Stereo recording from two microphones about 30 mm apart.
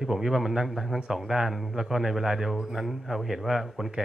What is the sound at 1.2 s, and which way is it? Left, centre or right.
A man's voice, centre.